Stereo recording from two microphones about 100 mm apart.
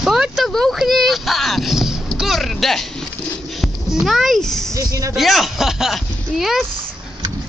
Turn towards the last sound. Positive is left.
turn(degrees=0)  # may be behind; listen again after turning